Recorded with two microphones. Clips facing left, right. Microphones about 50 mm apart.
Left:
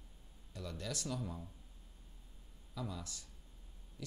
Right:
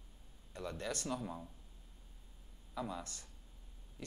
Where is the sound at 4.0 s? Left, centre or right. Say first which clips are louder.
Even; right.